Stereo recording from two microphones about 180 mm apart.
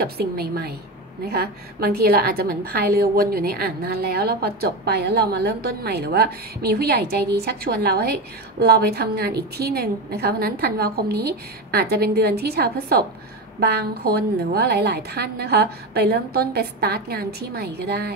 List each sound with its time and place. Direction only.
0.0 s a woman's voice: 60° right (ahead or behind)